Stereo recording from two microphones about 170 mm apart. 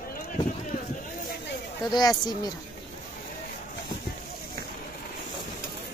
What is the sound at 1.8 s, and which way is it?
Speech, 25° left (ahead or behind).